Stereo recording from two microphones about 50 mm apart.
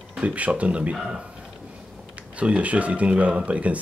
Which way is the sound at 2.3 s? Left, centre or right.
Right.